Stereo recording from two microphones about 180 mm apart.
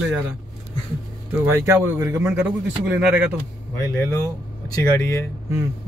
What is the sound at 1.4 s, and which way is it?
Speech, 15° right (ahead or behind).